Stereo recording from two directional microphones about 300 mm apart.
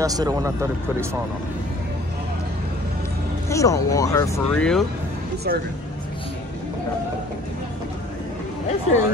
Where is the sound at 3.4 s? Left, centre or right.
Centre.